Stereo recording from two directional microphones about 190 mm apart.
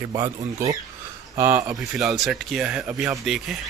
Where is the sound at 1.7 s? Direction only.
Centre (ahead or behind).